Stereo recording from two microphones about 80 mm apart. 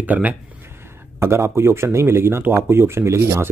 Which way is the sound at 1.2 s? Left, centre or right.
Right.